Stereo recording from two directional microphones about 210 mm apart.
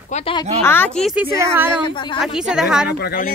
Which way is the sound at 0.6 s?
10° left (ahead or behind).